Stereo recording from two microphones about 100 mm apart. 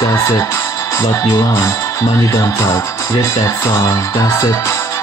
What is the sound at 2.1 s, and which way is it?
Music, 30° left (ahead or behind).